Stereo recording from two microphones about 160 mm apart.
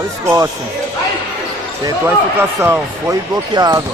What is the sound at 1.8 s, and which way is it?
Speech, 15° right (ahead or behind).